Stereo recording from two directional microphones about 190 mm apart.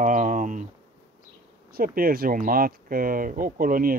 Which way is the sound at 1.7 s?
50° right (ahead or behind).